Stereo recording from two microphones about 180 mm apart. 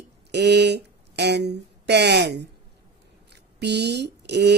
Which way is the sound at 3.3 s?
70° right (ahead or behind).